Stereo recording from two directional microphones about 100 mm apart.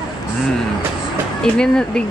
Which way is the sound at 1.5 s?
5° left (ahead or behind).